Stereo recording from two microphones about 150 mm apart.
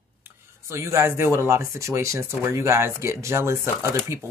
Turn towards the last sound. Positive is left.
turn(degrees=-20)  # may be behind; listen again after turning